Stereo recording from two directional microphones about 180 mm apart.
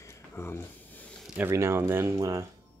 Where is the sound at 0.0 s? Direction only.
15° left (ahead or behind).